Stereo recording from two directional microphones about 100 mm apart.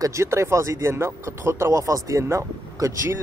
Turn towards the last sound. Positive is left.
turn(degrees=-35)  # may be behind; listen again after turning